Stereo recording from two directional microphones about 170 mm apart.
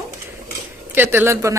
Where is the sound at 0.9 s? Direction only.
10° right (ahead or behind).